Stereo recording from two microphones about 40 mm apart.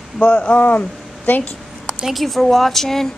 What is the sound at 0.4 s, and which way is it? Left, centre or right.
Speech, left.